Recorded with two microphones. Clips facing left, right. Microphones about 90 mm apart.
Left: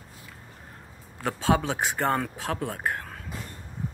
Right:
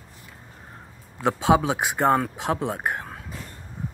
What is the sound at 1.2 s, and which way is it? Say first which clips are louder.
Speech: right 5 dB; 15° right (ahead or behind).